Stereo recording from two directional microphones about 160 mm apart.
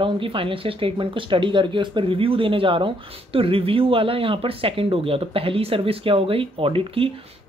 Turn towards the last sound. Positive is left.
turn(degrees=-35)  # may be behind; listen again after turning